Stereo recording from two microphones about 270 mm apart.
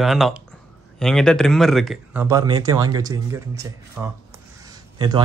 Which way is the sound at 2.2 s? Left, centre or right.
Centre.